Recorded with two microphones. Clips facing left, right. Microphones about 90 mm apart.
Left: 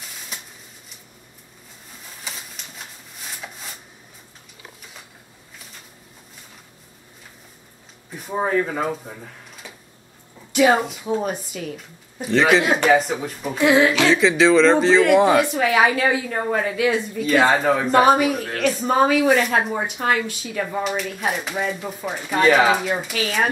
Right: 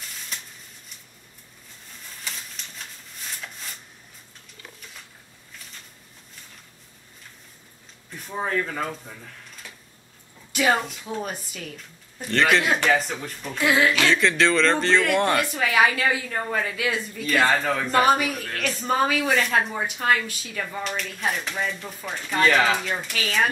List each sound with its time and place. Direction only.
0.0 s a sound: 5° left (ahead or behind)
1.9 s a sound: 5° left (ahead or behind)
4.6 s mechanisms: 10° left (ahead or behind)
8.1 s a woman's voice: 10° left (ahead or behind)
15.4 s a woman's voice: 20° left (ahead or behind)
20.8 s speech: 5° left (ahead or behind)